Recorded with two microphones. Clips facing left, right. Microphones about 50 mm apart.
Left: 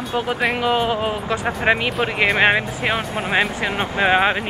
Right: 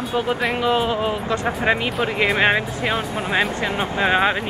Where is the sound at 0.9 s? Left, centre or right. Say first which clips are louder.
Even; left.